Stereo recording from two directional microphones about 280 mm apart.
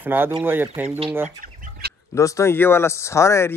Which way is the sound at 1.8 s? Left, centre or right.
Right.